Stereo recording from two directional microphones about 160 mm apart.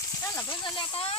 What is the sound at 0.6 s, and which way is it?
Snake, 30° left (ahead or behind).